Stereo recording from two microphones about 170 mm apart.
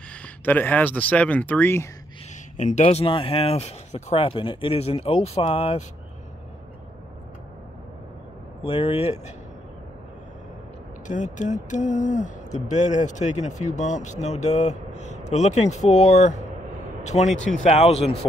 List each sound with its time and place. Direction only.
0.1 s speech: 10° left (ahead or behind)
2.5 s speech: 45° left (ahead or behind)
8.6 s speech: 35° left (ahead or behind)
11.1 s speech: 45° left (ahead or behind)